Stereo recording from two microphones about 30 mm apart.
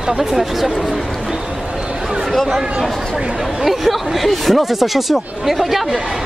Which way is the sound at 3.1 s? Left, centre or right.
Right.